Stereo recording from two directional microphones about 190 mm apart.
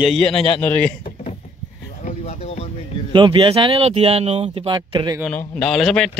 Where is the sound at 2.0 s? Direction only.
35° left (ahead or behind).